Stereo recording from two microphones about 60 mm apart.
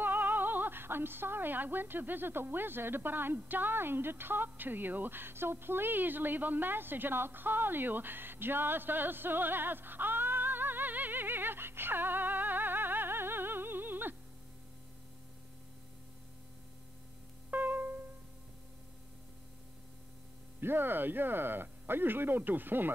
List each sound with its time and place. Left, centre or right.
0.0 s speech: right
17.5 s music: right
20.6 s speech: right